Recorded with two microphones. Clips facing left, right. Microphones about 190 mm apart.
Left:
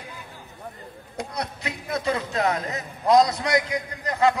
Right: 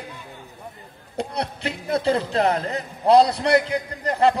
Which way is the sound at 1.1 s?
30° right (ahead or behind).